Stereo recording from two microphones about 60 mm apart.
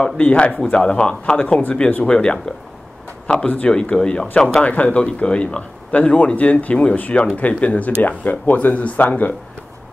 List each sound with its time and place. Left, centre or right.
0.0 s speech: left